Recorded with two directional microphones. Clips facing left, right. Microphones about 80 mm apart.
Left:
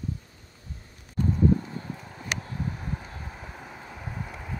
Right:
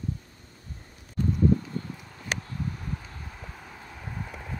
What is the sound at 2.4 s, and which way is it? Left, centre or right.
Vehicle, left.